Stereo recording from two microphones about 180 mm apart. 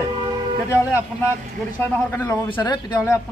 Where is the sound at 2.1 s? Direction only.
15° left (ahead or behind).